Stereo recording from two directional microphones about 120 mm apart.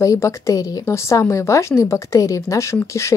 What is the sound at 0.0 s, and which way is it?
A woman's voice, 25° left (ahead or behind).